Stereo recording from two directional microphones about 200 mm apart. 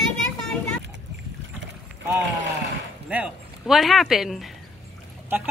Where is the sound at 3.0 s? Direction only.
5° right (ahead or behind).